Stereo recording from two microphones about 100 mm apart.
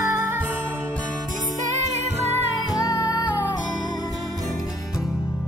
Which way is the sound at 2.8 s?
40° left (ahead or behind).